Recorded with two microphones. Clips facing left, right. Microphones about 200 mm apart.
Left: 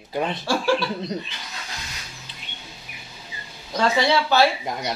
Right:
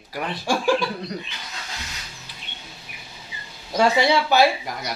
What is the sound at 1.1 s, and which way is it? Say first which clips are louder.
Speech: left 3 dB; 25° left (ahead or behind).